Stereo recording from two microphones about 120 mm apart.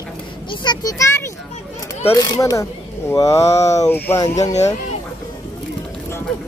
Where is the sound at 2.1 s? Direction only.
25° left (ahead or behind).